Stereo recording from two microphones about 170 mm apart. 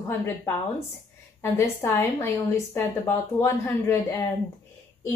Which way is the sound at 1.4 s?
15° left (ahead or behind).